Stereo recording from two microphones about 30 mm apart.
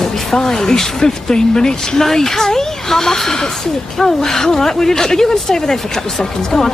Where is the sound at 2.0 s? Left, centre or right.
Centre.